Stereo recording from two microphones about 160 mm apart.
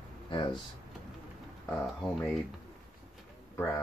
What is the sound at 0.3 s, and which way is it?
Speech, 30° left (ahead or behind).